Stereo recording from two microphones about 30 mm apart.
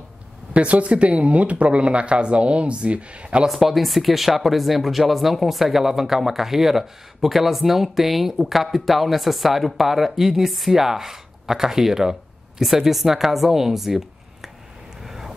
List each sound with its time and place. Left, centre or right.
0.5 s speech: right
3.4 s speech: centre
15.0 s vehicle: centre